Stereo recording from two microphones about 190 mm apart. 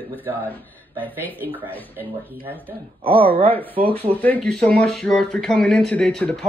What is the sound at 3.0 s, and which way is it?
Speech, 30° right (ahead or behind).